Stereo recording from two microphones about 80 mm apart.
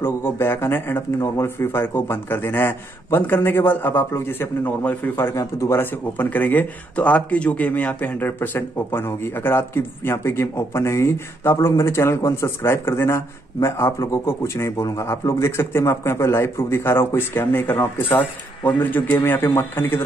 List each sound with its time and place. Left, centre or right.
0.0 s speech: left
5.4 s speech: left
5.8 s speech: left